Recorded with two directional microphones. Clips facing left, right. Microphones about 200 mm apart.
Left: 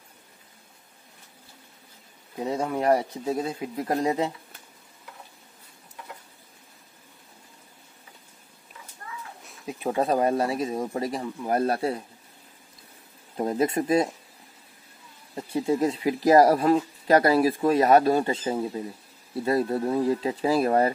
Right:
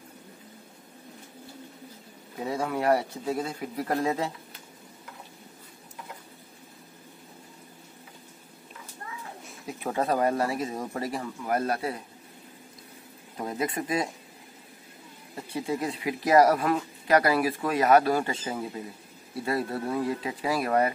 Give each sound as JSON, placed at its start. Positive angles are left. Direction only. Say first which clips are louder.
{"t": 2.3, "sound": "speech", "louder": "left 2 dB", "side_deg": 20}
{"t": 9.7, "sound": "speech", "louder": "left 3 dB", "side_deg": 15}
{"t": 11.4, "sound": "speech", "louder": "left 4 dB", "side_deg": 30}
{"t": 13.4, "sound": "speech", "louder": "left 6 dB", "side_deg": 30}
{"t": 15.3, "sound": "speech", "louder": "left 6 dB", "side_deg": 30}